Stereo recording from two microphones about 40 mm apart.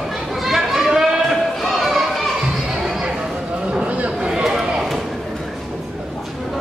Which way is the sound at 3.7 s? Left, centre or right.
Right.